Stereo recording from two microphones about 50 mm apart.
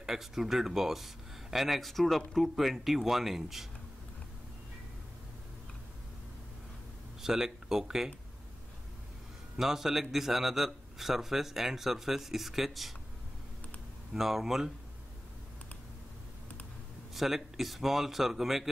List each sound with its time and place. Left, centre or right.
0.0 s speech: centre
7.2 s speech: centre
9.6 s speech: centre
14.1 s speech: centre
17.1 s speech: centre